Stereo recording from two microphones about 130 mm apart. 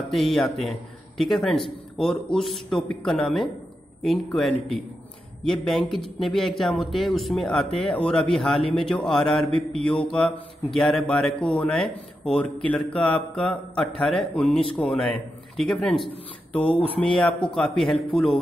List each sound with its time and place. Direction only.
0.1 s a man's voice: centre (ahead or behind)
16.6 s speech: 45° left (ahead or behind)
17.4 s a man's voice: 5° left (ahead or behind)